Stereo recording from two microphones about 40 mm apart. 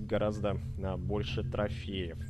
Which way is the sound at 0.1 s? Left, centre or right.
Centre.